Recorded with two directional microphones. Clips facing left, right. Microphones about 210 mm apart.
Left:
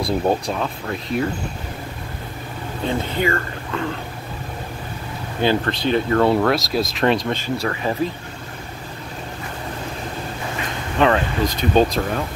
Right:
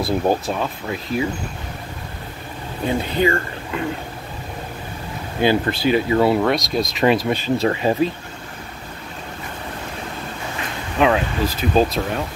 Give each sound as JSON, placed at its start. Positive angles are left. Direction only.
{"t": 0.0, "sound": "speech", "side_deg": 0}
{"t": 2.9, "sound": "speech", "side_deg": -15}
{"t": 5.4, "sound": "speech", "side_deg": -10}
{"t": 7.4, "sound": "speech", "side_deg": -20}
{"t": 11.0, "sound": "speech", "side_deg": -5}